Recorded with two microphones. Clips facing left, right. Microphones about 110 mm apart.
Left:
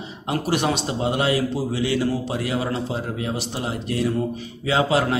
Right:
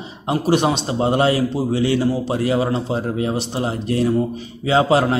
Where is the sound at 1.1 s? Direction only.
35° right (ahead or behind).